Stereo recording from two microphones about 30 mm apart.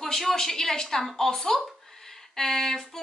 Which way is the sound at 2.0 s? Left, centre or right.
Centre.